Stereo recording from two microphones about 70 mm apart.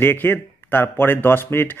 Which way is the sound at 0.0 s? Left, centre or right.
Left.